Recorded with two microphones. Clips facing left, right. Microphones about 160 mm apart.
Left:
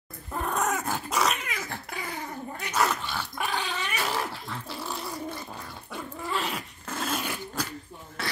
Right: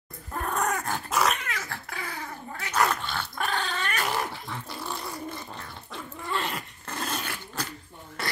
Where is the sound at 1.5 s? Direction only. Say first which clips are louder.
Left 1 dB; 20° left (ahead or behind).